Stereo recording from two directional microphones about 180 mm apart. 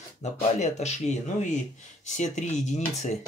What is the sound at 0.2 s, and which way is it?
Speech, 40° left (ahead or behind).